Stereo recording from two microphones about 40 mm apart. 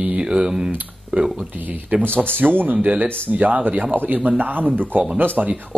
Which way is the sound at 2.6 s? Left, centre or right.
Right.